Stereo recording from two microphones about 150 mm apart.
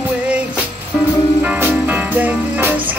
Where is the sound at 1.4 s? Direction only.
10° right (ahead or behind).